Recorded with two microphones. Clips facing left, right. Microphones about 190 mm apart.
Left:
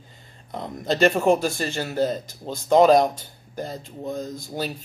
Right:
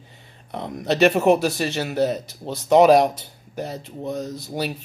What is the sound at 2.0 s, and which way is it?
Speech, 75° right (ahead or behind).